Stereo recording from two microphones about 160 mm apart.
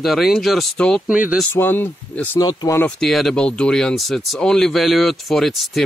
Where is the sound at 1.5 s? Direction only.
15° left (ahead or behind).